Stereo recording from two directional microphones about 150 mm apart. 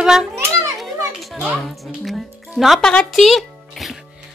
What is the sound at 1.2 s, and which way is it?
Children playing, centre (ahead or behind).